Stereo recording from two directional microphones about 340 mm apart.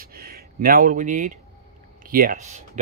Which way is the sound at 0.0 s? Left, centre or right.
Right.